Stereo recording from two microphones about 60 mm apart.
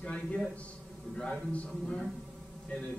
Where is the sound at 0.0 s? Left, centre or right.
Centre.